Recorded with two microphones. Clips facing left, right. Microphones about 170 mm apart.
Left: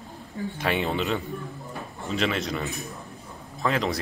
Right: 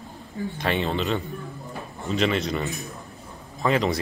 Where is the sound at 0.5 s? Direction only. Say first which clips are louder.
Right 1 dB; 5° left (ahead or behind).